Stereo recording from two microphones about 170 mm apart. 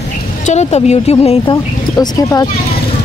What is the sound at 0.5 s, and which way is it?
Speech, 40° left (ahead or behind).